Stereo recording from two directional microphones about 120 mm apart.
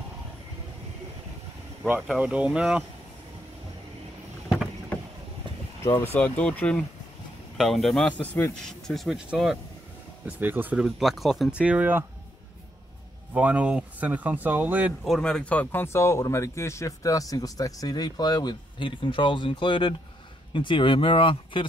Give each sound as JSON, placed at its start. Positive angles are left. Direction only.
{"t": 2.1, "sound": "speech", "side_deg": -10}
{"t": 6.1, "sound": "a man's voice", "side_deg": 10}
{"t": 10.2, "sound": "speech", "side_deg": -15}
{"t": 11.6, "sound": "speech", "side_deg": -10}
{"t": 13.3, "sound": "speech", "side_deg": -10}
{"t": 15.0, "sound": "speech", "side_deg": 5}